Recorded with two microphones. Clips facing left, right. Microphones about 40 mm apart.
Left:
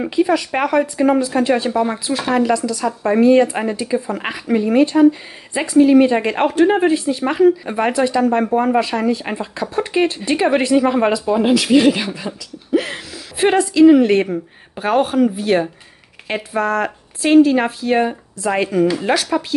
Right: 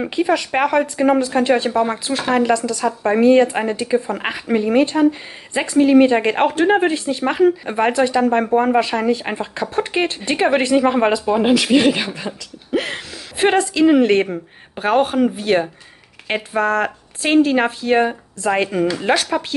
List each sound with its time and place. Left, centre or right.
0.1 s speech: right